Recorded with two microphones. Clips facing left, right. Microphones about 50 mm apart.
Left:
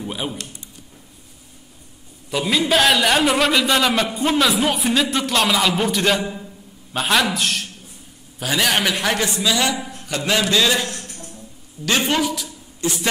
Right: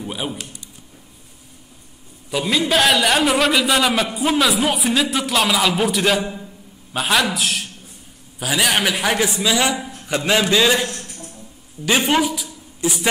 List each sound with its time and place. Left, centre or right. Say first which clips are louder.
0.0 s a man's voice: even; centre
2.3 s a man's voice: even; centre
9.8 s a sound: even; centre
10.0 s a man's voice: right 2 dB; centre
12.1 s a man's voice: right 2 dB; centre